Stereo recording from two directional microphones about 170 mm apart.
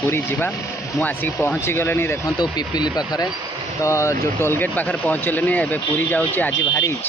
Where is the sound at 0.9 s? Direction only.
10° left (ahead or behind).